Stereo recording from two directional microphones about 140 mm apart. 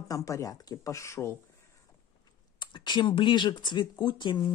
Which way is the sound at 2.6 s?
35° left (ahead or behind).